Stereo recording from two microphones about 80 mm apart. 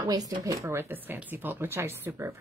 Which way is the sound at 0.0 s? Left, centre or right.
Right.